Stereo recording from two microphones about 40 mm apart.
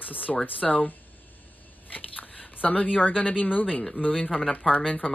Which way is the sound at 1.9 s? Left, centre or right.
Left.